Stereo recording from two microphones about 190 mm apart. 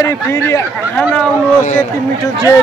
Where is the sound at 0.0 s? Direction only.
15° left (ahead or behind).